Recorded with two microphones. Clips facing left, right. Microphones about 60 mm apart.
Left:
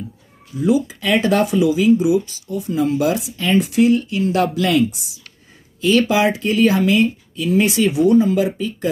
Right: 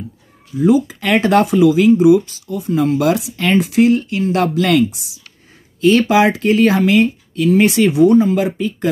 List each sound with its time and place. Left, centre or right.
0.6 s speech: right